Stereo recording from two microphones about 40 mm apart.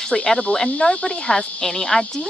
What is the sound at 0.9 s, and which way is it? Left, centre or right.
Speech, left.